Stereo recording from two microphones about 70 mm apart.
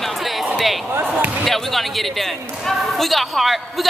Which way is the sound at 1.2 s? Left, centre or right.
Right.